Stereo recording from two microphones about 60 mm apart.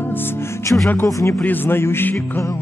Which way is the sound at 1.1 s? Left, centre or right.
Left.